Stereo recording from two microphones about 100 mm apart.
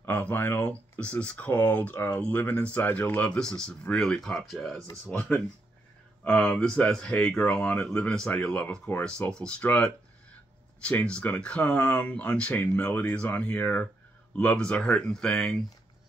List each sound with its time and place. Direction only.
0.0 s speech: 20° left (ahead or behind); by 4.8 s 5° left (ahead or behind)
6.2 s speech: 10° left (ahead or behind)